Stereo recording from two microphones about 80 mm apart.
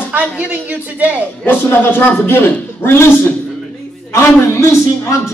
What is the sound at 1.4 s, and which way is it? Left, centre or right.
A man's voice, left.